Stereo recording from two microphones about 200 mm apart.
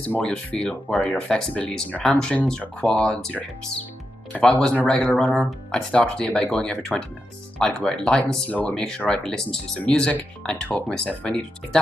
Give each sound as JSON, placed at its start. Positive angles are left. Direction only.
{"t": 0.0, "sound": "speech", "side_deg": 5}